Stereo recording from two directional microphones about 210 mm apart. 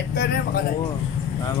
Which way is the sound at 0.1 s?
50° left (ahead or behind).